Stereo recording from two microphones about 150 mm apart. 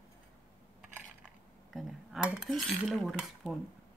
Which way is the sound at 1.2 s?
Centre (ahead or behind).